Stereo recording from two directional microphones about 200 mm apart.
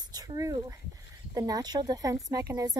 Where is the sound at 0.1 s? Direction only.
20° right (ahead or behind).